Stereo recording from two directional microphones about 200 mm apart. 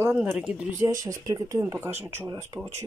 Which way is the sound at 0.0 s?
10° right (ahead or behind).